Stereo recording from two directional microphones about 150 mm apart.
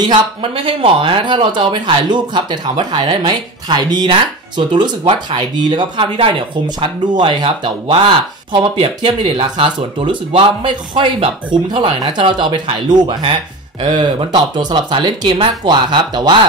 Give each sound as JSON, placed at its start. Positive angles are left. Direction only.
{"t": 0.0, "sound": "speech", "side_deg": -35}